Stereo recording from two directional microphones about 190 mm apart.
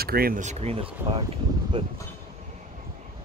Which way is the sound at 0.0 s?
50° right (ahead or behind).